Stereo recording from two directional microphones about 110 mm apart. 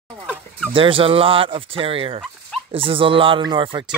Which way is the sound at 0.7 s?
55° right (ahead or behind).